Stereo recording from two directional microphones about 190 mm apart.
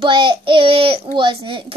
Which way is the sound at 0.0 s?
25° right (ahead or behind).